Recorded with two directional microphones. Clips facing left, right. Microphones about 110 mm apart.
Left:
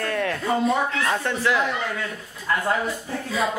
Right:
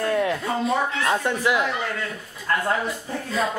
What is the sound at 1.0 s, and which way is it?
Speech, 15° right (ahead or behind).